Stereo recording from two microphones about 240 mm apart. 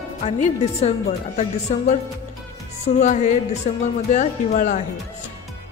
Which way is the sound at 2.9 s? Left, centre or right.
Left.